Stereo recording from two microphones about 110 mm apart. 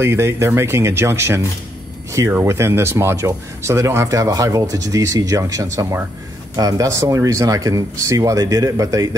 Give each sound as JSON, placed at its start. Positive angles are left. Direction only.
{"t": 0.0, "sound": "speech", "side_deg": -20}
{"t": 2.4, "sound": "speech", "side_deg": -25}